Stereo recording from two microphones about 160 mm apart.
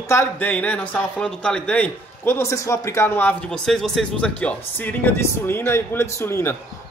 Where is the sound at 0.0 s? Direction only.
15° left (ahead or behind).